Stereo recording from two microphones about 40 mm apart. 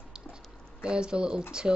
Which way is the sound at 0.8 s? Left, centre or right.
Right.